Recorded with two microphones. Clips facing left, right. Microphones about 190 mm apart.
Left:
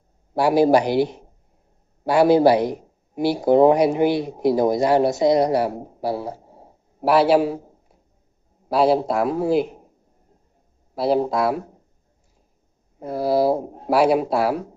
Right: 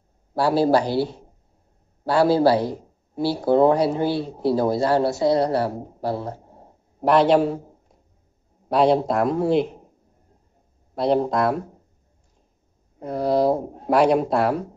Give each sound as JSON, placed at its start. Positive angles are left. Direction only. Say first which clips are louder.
{"t": 0.3, "sound": "a man's voice", "louder": "left 2 dB", "side_deg": 15}
{"t": 11.0, "sound": "speech", "louder": "even", "side_deg": 5}
{"t": 13.0, "sound": "speech", "louder": "left 1 dB", "side_deg": 5}